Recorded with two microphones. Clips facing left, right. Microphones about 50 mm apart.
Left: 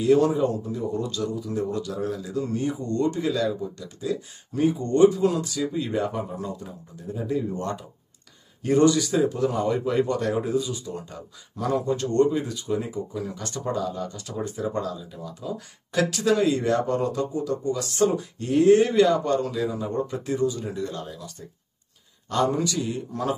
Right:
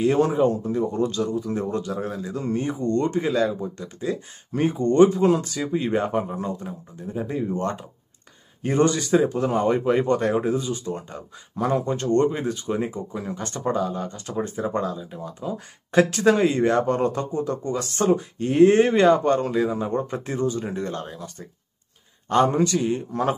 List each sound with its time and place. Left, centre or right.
0.0 s speech: right